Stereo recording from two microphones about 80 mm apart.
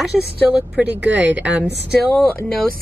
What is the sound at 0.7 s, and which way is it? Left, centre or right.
Speech, centre.